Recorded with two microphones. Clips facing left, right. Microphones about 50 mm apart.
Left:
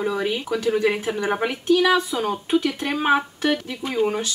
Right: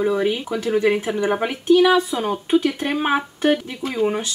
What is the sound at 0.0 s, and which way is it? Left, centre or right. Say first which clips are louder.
Speech: right 4 dB; centre.